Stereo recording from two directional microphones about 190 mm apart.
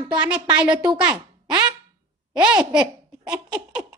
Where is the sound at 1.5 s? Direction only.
20° right (ahead or behind).